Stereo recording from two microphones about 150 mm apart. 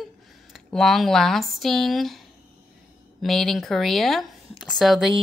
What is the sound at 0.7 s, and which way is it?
A woman's voice, centre (ahead or behind).